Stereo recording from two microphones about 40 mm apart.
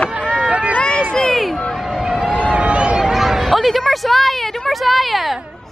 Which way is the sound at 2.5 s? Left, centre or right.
Right.